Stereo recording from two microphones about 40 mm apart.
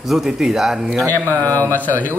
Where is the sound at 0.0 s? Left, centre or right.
Centre.